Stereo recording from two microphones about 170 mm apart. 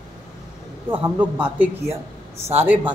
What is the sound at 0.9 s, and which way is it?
A man's voice, 10° right (ahead or behind).